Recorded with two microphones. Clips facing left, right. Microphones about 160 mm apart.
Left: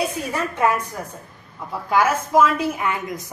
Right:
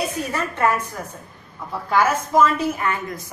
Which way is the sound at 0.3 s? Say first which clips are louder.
Even; 10° left (ahead or behind).